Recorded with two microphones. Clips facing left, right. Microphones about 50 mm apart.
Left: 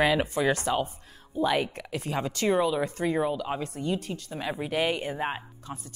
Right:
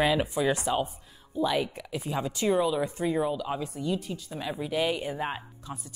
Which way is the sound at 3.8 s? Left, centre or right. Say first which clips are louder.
Left 1 dB; left.